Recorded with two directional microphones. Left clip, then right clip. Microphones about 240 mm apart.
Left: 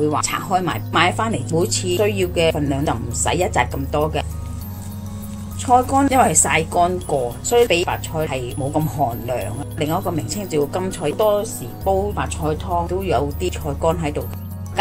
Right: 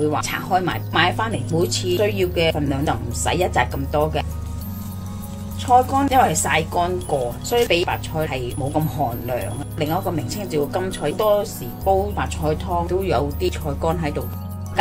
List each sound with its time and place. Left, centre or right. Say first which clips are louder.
0.1 s speech: left 1 dB; centre
5.7 s speech: left 1 dB; centre
8.9 s speech: left 2 dB; centre
9.8 s speech: left 1 dB; centre
12.6 s speech: left 2 dB; centre